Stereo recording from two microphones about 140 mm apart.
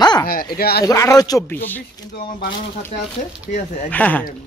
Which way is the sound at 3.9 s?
10° left (ahead or behind).